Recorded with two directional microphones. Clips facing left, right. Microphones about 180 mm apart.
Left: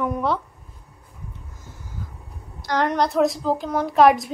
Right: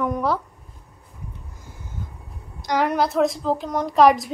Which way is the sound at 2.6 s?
10° right (ahead or behind).